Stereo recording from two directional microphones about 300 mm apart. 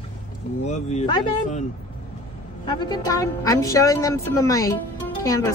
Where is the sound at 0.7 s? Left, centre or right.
Left.